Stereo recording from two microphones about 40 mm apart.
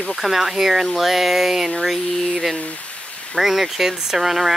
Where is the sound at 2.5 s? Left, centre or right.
Left.